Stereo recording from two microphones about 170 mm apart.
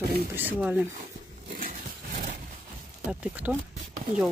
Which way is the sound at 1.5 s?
55° right (ahead or behind).